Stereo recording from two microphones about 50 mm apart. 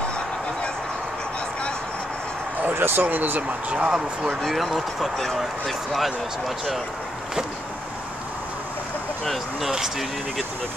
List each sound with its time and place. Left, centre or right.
2.7 s speech: right
3.0 s speech: right
3.8 s speech: centre
4.4 s speech: centre
9.2 s speech: centre